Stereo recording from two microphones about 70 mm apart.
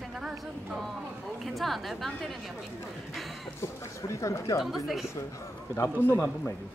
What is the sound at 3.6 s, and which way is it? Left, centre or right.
Speech, left.